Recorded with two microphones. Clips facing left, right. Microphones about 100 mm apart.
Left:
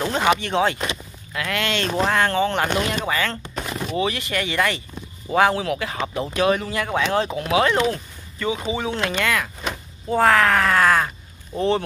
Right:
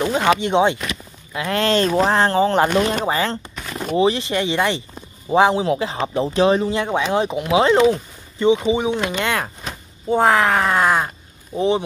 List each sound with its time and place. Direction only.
0.4 s speech: 20° right (ahead or behind)